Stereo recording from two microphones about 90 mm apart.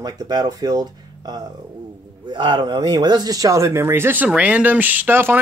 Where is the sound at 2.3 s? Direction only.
60° right (ahead or behind).